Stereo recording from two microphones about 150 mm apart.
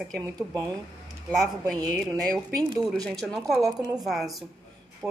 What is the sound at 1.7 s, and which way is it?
A woman's voice, centre (ahead or behind).